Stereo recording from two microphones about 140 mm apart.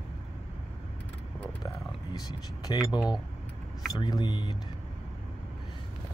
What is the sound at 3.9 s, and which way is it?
Speech, 30° left (ahead or behind).